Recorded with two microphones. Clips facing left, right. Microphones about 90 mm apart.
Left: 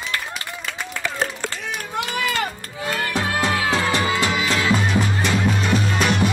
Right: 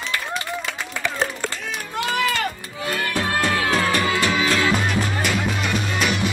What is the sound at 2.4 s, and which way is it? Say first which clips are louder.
Music: even; 25° left (ahead or behind).